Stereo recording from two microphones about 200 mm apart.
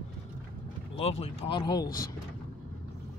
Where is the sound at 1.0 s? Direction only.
30° left (ahead or behind).